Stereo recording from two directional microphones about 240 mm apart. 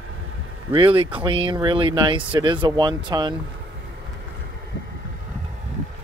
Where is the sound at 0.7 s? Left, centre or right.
Right.